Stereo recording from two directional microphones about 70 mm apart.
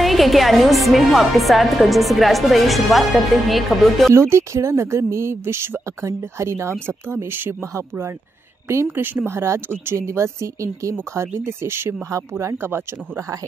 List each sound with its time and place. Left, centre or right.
0.0 s a woman's voice: centre
4.1 s speech: right
8.9 s speech: right